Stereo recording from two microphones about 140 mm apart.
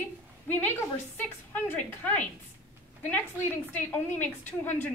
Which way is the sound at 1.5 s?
10° left (ahead or behind).